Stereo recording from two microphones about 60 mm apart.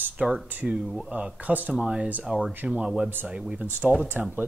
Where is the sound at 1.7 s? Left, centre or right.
Centre.